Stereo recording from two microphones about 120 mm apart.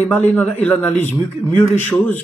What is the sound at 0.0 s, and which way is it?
A man's voice, 15° left (ahead or behind).